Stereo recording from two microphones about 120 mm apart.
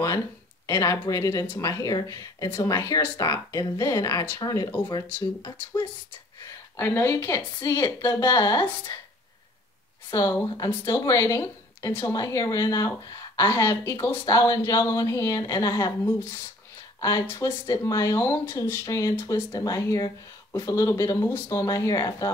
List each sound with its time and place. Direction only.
0.7 s speech: 25° left (ahead or behind)
4.8 s speech: 40° left (ahead or behind)
6.8 s speech: 20° left (ahead or behind)
10.1 s speech: 20° left (ahead or behind)